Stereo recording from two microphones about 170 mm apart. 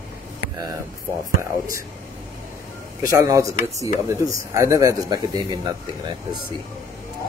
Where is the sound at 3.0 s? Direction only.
20° right (ahead or behind).